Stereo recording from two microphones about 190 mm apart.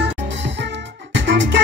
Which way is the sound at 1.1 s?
70° right (ahead or behind).